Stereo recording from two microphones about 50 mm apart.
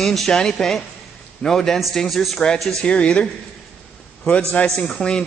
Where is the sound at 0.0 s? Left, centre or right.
Centre.